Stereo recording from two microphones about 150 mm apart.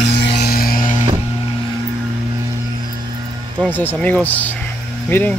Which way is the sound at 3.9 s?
10° left (ahead or behind).